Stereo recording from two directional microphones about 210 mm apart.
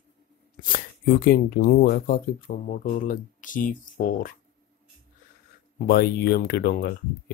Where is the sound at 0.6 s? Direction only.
45° left (ahead or behind).